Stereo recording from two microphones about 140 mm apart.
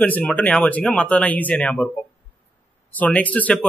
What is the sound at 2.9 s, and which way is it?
Speech, 10° left (ahead or behind).